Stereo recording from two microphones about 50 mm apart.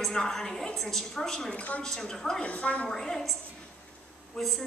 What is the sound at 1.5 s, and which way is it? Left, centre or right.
Speech, left.